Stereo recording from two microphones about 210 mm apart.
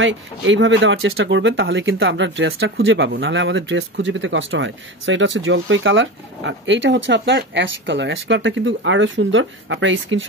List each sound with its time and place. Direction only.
0.0 s speech: 60° right (ahead or behind)